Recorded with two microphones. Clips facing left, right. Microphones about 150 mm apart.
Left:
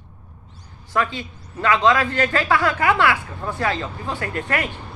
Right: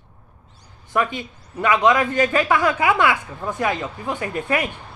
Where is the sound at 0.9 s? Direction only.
20° right (ahead or behind).